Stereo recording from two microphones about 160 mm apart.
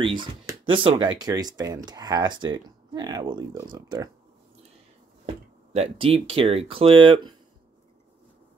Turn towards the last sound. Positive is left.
turn(degrees=-30)  # may be behind; listen again after turning